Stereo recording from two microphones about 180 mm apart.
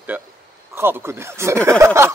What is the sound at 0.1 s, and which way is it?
Speech, 10° right (ahead or behind).